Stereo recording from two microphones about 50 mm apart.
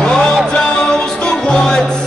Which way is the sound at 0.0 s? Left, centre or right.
Centre.